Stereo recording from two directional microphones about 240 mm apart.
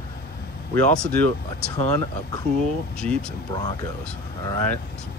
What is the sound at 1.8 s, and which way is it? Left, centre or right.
Speech, centre.